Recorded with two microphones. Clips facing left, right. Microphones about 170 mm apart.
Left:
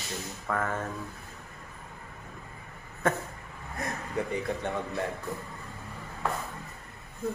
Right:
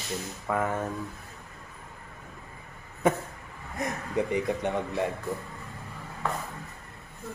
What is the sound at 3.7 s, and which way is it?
Speech, 20° right (ahead or behind).